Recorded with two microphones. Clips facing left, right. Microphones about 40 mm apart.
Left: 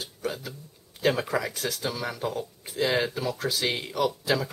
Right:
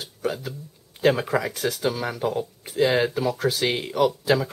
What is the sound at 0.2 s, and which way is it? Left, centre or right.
Speech, centre.